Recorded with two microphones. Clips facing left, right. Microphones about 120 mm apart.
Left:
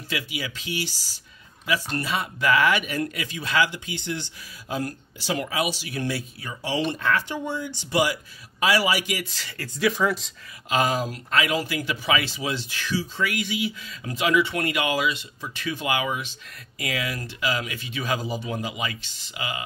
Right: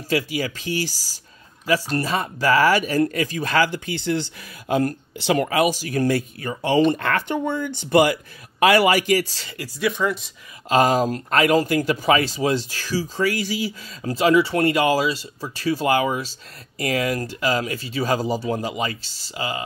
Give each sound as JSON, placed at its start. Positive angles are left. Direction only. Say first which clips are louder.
{"t": 0.1, "sound": "speech", "louder": "right 8 dB", "side_deg": -45}
{"t": 4.6, "sound": "speech", "louder": "right 8 dB", "side_deg": -65}
{"t": 9.8, "sound": "speech", "louder": "even", "side_deg": 0}
{"t": 10.7, "sound": "speech", "louder": "right 6 dB", "side_deg": -45}